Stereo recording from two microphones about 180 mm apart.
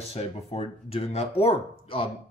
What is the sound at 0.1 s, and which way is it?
Speech, 35° left (ahead or behind).